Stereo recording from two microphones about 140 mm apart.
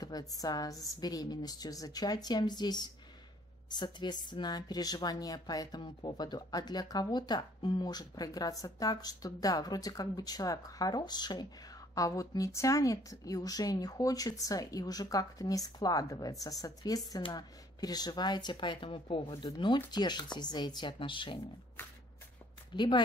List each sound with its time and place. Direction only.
0.0 s a woman's voice: 25° left (ahead or behind)
22.8 s speech: 30° left (ahead or behind)